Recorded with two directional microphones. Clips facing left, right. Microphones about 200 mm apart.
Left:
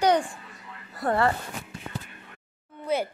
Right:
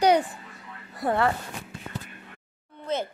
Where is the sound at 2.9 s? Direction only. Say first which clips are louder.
Left 2 dB; 10° left (ahead or behind).